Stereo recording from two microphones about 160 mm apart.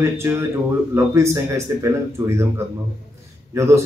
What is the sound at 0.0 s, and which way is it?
Speech, 15° right (ahead or behind).